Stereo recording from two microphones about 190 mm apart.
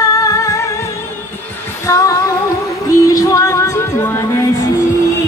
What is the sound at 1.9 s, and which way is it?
Female singing, 15° left (ahead or behind).